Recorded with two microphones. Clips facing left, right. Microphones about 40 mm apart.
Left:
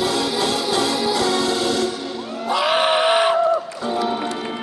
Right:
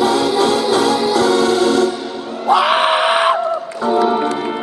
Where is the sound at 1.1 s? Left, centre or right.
Right.